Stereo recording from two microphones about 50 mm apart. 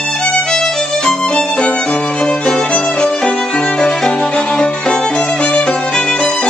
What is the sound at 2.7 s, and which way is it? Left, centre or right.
Violin, left.